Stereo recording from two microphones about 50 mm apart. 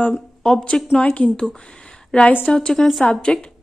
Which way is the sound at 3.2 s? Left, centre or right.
Left.